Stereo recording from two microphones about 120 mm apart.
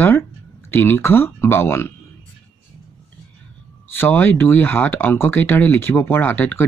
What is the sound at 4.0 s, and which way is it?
Speech, 15° left (ahead or behind).